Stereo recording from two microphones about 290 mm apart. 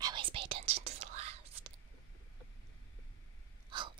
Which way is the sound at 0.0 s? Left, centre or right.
Centre.